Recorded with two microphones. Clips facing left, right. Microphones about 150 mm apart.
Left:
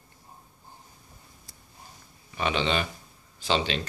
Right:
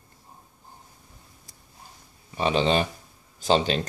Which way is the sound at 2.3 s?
35° right (ahead or behind).